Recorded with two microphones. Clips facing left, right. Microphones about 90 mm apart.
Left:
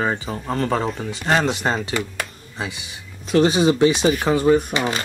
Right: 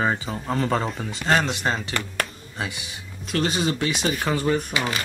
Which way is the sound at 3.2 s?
20° left (ahead or behind).